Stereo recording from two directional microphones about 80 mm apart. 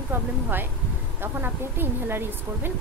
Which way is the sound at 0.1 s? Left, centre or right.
Right.